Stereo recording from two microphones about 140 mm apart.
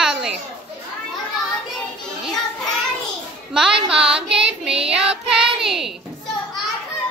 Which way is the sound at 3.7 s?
40° right (ahead or behind).